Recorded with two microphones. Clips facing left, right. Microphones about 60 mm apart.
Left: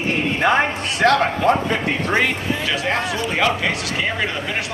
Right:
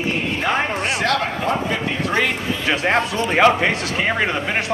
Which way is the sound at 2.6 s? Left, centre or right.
Right.